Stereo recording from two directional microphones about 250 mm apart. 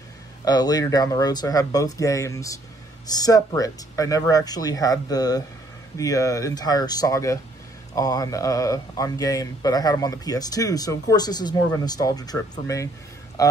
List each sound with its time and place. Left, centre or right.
0.5 s speech: centre